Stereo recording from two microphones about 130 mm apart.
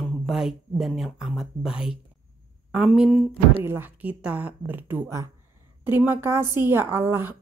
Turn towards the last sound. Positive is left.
turn(degrees=-20)  # may be behind; listen again after turning